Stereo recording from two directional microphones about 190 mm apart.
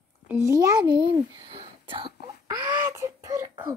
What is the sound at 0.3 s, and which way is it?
A child's voice, 15° right (ahead or behind).